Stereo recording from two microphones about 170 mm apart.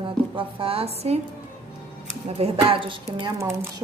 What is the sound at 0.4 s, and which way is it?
Speech, 35° right (ahead or behind).